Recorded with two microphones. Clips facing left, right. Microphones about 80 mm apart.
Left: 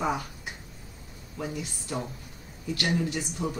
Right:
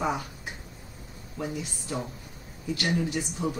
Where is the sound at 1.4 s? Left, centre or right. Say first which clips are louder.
Right 1 dB; centre.